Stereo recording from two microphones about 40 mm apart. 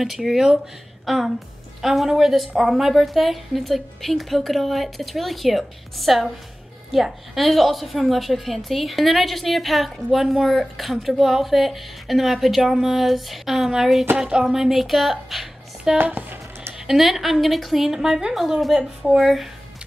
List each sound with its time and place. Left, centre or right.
0.0 s a woman's voice: centre
16.1 s speech: right
16.7 s a woman's voice: centre